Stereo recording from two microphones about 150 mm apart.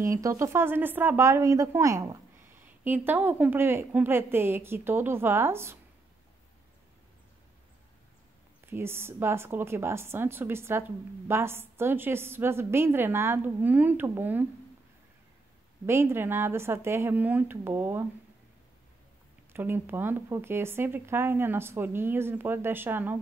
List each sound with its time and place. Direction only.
0.0 s a woman's voice: 20° right (ahead or behind)
8.6 s a woman's voice: 15° right (ahead or behind)
15.8 s a woman's voice: 15° right (ahead or behind)
19.5 s a woman's voice: 15° right (ahead or behind)